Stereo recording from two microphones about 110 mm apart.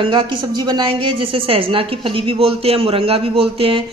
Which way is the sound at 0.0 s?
50° right (ahead or behind).